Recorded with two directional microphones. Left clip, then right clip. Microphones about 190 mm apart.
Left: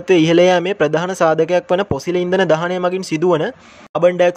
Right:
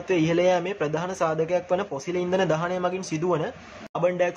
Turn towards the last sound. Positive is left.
turn(degrees=55)  # may be behind; listen again after turning